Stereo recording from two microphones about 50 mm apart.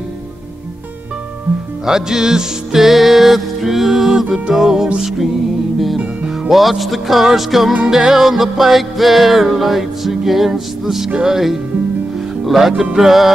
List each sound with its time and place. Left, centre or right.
1.9 s music: centre
6.5 s music: centre